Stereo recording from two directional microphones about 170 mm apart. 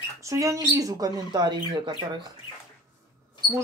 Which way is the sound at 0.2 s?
20° right (ahead or behind).